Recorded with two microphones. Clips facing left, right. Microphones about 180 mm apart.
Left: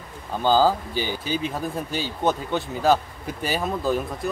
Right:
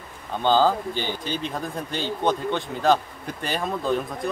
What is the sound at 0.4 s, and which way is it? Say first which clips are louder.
Speech: left 1 dB; 5° left (ahead or behind).